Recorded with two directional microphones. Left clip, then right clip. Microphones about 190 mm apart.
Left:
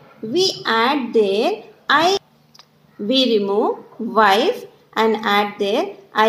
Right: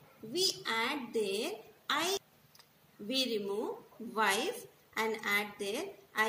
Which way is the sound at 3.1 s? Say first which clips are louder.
Left 17 dB; 60° right (ahead or behind).